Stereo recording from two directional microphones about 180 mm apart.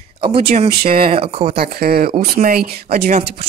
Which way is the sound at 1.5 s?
60° right (ahead or behind).